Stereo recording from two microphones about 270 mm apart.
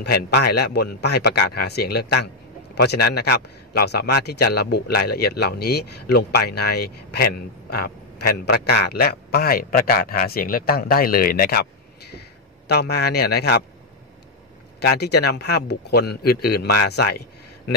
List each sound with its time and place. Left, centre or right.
0.0 s a man's voice: left
8.5 s a man's voice: left
12.6 s a man's voice: left
14.8 s a man's voice: left